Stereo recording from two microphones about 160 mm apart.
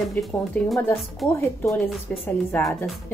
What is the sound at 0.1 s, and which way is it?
Speech, centre (ahead or behind).